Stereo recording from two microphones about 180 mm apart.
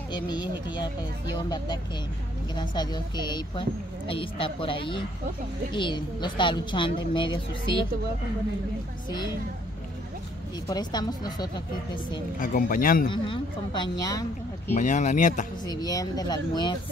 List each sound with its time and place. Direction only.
0.1 s a woman's voice: 25° left (ahead or behind)
2.5 s a woman's voice: 25° left (ahead or behind)
10.7 s a woman's voice: 25° left (ahead or behind)
12.4 s speech: 50° left (ahead or behind)
13.1 s a woman's voice: 25° left (ahead or behind)
14.8 s speech: 45° left (ahead or behind)
15.6 s a woman's voice: 20° left (ahead or behind)